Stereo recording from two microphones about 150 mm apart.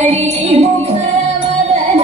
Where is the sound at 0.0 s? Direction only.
45° right (ahead or behind).